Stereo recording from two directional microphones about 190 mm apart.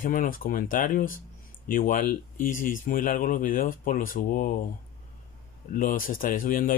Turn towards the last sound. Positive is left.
turn(degrees=45)  # may be behind; listen again after turning